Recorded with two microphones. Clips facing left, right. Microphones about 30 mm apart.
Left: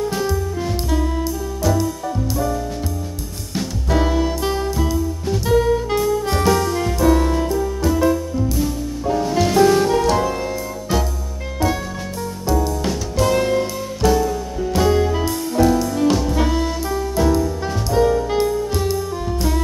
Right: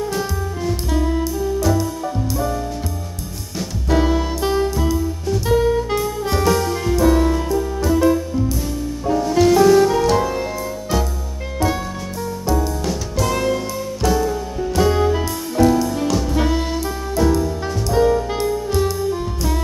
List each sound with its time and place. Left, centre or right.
0.1 s music: centre
3.9 s music: centre
11.6 s music: centre
13.5 s music: centre
14.0 s music: centre
16.3 s saxophone: centre
16.8 s music: centre